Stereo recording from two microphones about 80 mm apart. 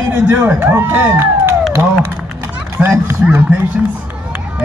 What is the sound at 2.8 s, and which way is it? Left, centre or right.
Speech, right.